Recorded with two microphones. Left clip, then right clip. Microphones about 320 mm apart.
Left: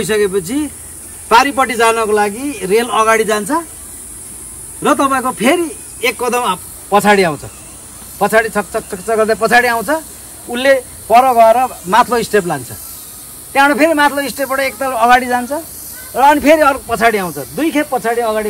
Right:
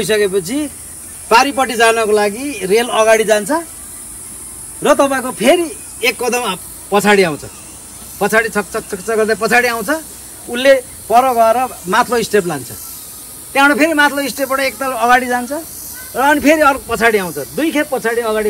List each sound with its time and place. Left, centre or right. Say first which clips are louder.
0.0 s a man's voice: even; centre
4.8 s a man's voice: even; centre
6.9 s speech: left 1 dB; left